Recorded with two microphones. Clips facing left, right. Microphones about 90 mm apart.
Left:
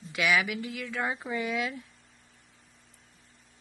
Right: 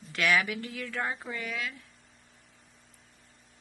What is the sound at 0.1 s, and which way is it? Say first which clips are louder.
A woman's voice: even; 10° left (ahead or behind).